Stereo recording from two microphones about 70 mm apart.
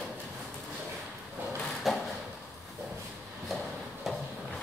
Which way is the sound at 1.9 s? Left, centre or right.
Centre.